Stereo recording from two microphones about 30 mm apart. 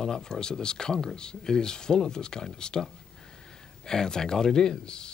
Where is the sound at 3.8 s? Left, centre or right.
Left.